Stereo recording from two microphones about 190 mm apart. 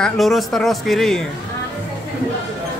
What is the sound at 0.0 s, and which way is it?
Speech, centre (ahead or behind).